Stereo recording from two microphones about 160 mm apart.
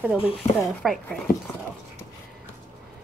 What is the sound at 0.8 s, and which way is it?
Speech, centre (ahead or behind).